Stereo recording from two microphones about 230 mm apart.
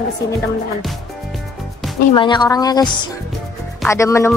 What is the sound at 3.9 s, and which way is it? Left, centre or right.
Speech, centre.